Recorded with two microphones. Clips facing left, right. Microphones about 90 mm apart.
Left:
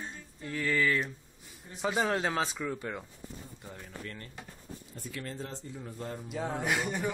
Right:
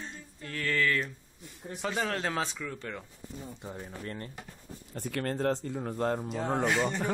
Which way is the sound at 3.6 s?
25° right (ahead or behind).